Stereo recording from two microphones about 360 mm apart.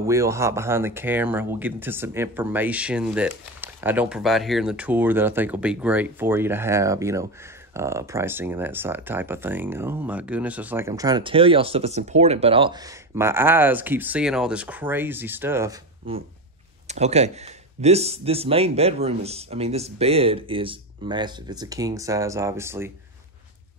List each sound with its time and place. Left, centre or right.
0.0 s speech: centre
16.8 s speech: centre